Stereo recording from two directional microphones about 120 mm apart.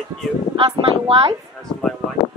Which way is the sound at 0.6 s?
45° right (ahead or behind).